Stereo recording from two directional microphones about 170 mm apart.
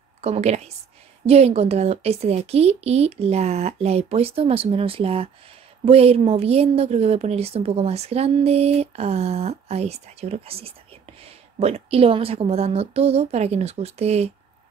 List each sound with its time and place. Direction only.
0.2 s speech: 40° right (ahead or behind)